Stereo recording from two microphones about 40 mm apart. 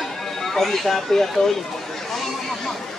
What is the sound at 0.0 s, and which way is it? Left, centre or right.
Speech, centre.